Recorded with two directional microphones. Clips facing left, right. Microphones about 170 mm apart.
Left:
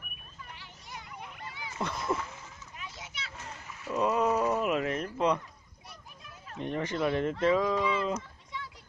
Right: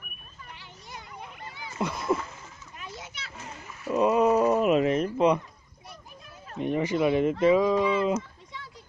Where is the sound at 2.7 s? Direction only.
50° right (ahead or behind).